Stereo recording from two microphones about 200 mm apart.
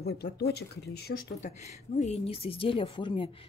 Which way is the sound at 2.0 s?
30° left (ahead or behind).